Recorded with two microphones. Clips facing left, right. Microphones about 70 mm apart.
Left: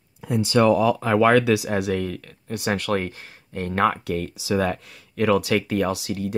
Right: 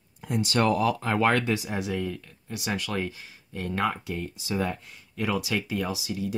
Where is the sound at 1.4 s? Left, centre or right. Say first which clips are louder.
Left 7 dB; left.